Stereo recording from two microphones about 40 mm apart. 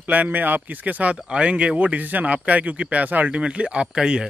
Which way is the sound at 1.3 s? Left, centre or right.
Right.